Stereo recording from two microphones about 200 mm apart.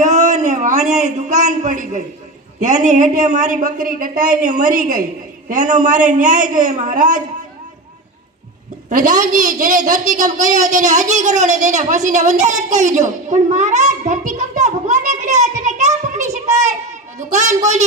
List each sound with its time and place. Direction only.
0.0 s a man's voice: 40° right (ahead or behind)
8.8 s a woman's voice: 40° right (ahead or behind)